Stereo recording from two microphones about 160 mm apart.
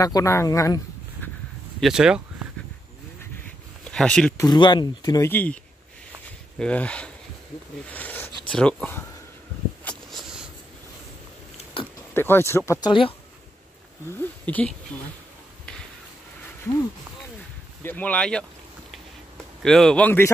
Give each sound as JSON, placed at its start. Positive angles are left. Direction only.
{"t": 0.0, "sound": "speech", "side_deg": 20}
{"t": 1.8, "sound": "speech", "side_deg": -5}
{"t": 3.8, "sound": "speech", "side_deg": 5}
{"t": 4.4, "sound": "speech", "side_deg": 25}
{"t": 5.3, "sound": "speech", "side_deg": 10}
{"t": 6.6, "sound": "speech", "side_deg": 5}
{"t": 7.9, "sound": "a sound", "side_deg": 10}
{"t": 8.5, "sound": "speech", "side_deg": 5}
{"t": 9.8, "sound": "a sound", "side_deg": 0}
{"t": 12.1, "sound": "speech", "side_deg": 15}
{"t": 14.1, "sound": "speech", "side_deg": 10}
{"t": 17.8, "sound": "speech", "side_deg": 10}
{"t": 19.6, "sound": "speech", "side_deg": 5}